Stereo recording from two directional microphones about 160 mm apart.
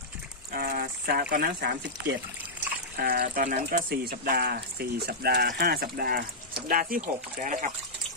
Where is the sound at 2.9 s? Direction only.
70° right (ahead or behind).